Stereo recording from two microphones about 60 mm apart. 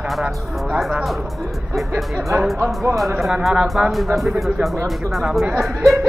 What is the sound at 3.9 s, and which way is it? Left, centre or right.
Speech, centre.